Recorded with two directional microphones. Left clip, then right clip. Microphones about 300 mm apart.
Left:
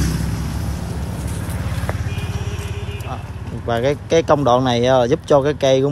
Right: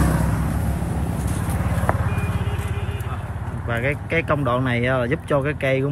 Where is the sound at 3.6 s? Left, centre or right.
Centre.